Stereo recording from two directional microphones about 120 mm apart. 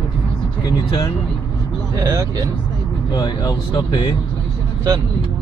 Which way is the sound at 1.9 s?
30° right (ahead or behind).